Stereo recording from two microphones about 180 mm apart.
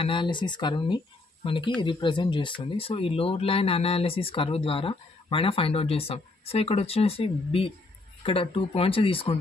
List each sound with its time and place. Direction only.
0.0 s speech: 25° left (ahead or behind)